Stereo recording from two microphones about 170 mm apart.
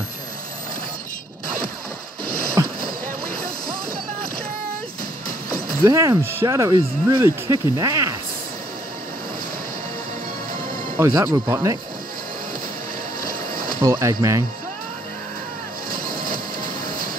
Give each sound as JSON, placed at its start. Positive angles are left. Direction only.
{"t": 2.6, "sound": "boat", "side_deg": -20}
{"t": 5.9, "sound": "speech", "side_deg": -20}
{"t": 11.0, "sound": "speech", "side_deg": -20}
{"t": 13.7, "sound": "speech", "side_deg": -20}
{"t": 15.9, "sound": "vehicle", "side_deg": -55}